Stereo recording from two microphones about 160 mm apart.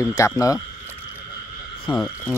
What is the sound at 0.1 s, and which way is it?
Speech, 20° left (ahead or behind).